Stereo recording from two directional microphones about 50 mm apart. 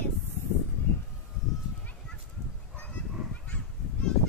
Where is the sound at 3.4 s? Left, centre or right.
Centre.